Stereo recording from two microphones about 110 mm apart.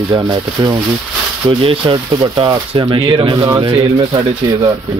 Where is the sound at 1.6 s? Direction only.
55° right (ahead or behind).